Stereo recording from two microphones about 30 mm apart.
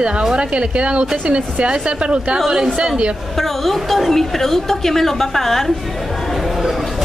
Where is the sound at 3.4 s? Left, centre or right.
Centre.